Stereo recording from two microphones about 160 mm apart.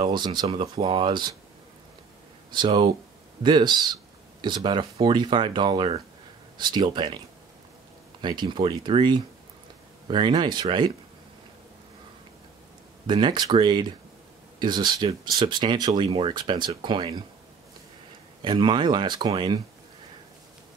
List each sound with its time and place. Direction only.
0.0 s speech: 30° right (ahead or behind)
2.5 s speech: 30° right (ahead or behind)
8.2 s speech: 30° right (ahead or behind)
13.0 s speech: 30° right (ahead or behind)
18.4 s speech: 30° right (ahead or behind)